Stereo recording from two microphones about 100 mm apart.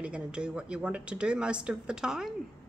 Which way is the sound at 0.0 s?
10° right (ahead or behind).